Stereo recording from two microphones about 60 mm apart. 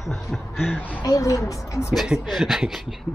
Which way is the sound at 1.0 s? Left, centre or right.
Left.